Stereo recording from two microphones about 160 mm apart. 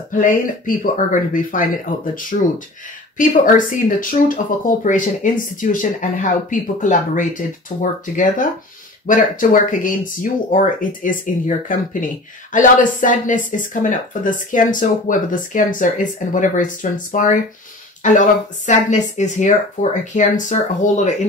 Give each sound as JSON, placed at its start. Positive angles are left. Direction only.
{"t": 0.1, "sound": "speech", "side_deg": 55}
{"t": 9.0, "sound": "speech", "side_deg": 55}